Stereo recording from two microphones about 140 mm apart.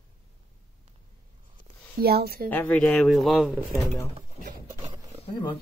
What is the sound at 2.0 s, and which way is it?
Speech, 90° right.